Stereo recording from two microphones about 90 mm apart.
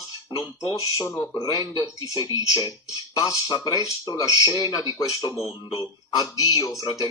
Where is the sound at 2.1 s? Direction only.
40° right (ahead or behind).